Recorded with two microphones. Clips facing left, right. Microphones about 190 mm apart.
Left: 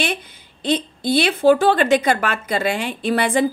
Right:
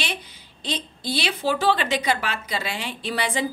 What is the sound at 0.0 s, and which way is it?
Speech, 55° left (ahead or behind).